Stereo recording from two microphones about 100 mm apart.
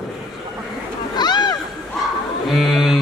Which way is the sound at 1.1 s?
45° left (ahead or behind).